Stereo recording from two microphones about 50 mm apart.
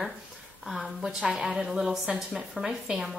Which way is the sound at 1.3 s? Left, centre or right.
Centre.